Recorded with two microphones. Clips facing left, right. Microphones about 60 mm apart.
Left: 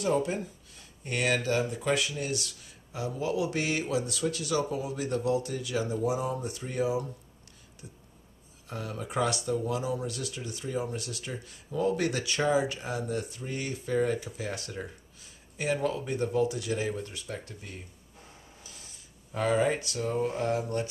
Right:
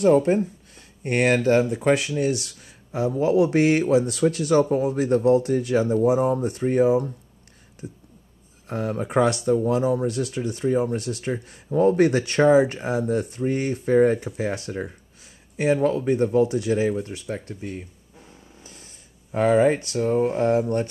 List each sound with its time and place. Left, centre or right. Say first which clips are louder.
0.0 s speech: right 11 dB; right
8.6 s speech: right 10 dB; right
18.6 s printer: right 5 dB; right
19.3 s speech: right 8 dB; right